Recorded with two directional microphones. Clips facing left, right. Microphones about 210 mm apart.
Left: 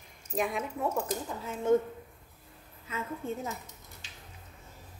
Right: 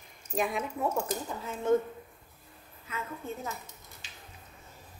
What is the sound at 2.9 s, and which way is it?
Speech, 25° left (ahead or behind).